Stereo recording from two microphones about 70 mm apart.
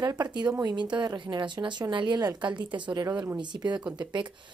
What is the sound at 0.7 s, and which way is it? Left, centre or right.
Speech, right.